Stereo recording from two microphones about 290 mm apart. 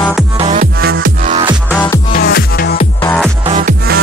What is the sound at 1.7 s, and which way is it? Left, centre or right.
Music, centre.